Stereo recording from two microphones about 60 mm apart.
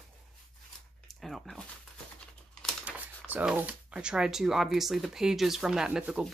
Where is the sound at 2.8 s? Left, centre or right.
Right.